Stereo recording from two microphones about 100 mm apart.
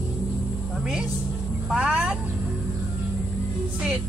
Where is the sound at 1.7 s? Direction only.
10° right (ahead or behind).